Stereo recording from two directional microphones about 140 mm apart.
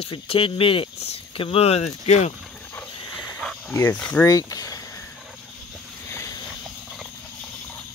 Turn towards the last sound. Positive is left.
turn(degrees=20)  # may be behind; listen again after turning